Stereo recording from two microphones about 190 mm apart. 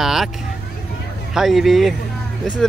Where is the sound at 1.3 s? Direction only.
Centre (ahead or behind).